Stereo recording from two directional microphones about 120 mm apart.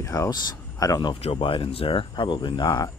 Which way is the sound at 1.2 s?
50° left (ahead or behind).